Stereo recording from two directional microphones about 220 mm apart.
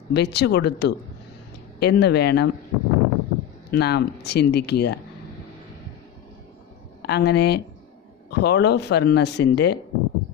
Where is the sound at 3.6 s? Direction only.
50° left (ahead or behind).